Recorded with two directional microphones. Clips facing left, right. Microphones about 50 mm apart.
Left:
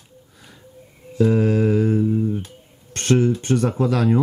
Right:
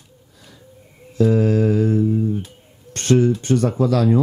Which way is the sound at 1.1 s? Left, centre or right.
Centre.